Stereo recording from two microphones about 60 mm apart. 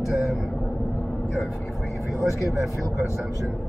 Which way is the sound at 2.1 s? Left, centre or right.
Centre.